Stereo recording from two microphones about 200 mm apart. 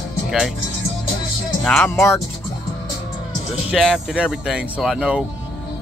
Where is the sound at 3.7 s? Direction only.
Centre (ahead or behind).